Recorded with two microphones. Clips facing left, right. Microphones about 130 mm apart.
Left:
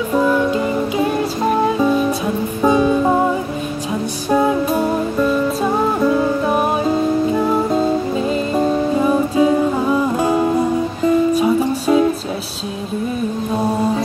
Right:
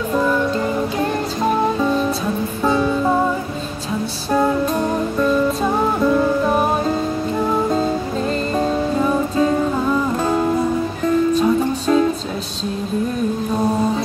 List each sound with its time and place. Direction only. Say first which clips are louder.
0.1 s music: left 3 dB; 10° left (ahead or behind)
1.8 s music: left 3 dB; 15° left (ahead or behind)
4.3 s music: left 2 dB; 10° left (ahead or behind)